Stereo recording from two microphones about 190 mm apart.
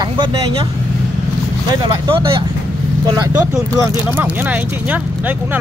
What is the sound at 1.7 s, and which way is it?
Speech, 25° right (ahead or behind).